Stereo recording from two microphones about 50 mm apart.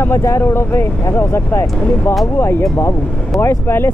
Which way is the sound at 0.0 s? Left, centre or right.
Left.